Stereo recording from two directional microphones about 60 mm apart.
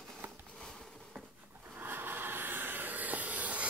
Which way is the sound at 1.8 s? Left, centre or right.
Right.